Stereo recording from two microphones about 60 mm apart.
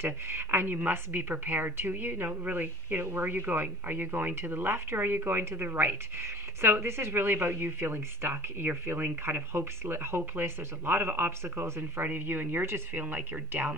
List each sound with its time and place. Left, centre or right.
0.0 s speech: right